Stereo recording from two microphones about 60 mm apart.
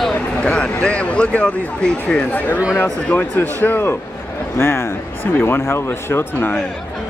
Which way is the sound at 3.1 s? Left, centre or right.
Left.